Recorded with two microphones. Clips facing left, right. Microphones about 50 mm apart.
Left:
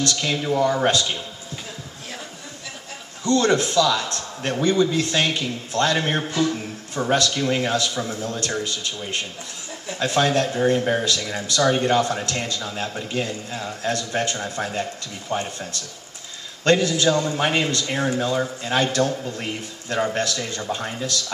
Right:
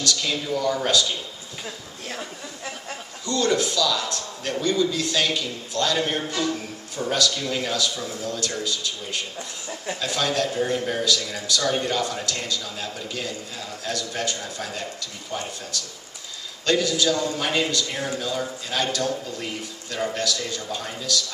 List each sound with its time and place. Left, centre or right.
0.0 s speech: left
3.3 s speech: left
7.0 s speech: left
16.6 s speech: left